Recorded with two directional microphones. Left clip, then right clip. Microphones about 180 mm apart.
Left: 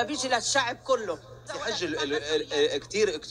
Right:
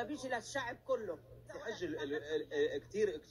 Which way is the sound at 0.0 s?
20° left (ahead or behind).